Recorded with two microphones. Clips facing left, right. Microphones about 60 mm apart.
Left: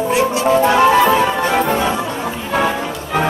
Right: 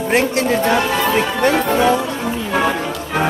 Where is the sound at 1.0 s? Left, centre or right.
Centre.